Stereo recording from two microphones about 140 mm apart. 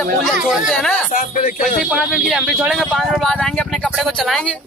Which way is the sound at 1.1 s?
75° left (ahead or behind).